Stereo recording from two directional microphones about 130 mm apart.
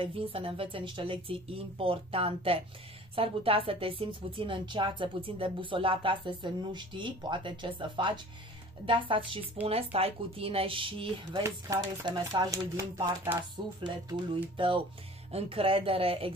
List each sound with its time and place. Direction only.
0.0 s a woman's voice: 45° right (ahead or behind)
11.4 s speech: 25° right (ahead or behind)
13.8 s a woman's voice: 35° right (ahead or behind)
15.3 s speech: 45° right (ahead or behind)